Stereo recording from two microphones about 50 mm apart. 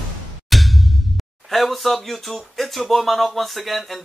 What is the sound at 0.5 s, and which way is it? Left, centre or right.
Speech, centre.